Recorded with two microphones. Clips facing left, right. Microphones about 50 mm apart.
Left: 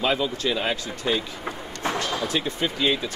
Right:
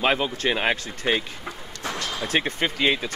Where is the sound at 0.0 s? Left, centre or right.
Right.